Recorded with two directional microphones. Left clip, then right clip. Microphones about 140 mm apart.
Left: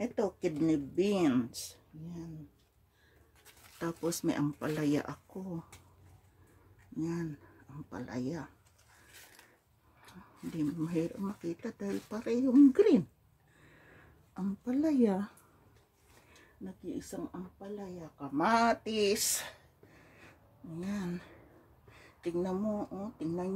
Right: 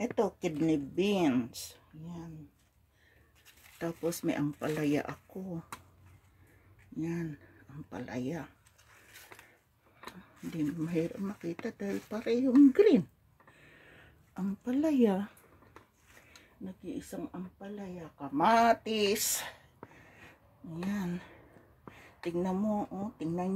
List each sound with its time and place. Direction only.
0.0 s speech: centre (ahead or behind)
1.2 s speech: 15° left (ahead or behind)
3.8 s speech: 20° left (ahead or behind)
7.0 s speech: 10° left (ahead or behind)
10.4 s speech: centre (ahead or behind)
13.6 s a sound: centre (ahead or behind)
16.8 s speech: 5° left (ahead or behind)
20.8 s speech: centre (ahead or behind)
22.2 s speech: 5° right (ahead or behind)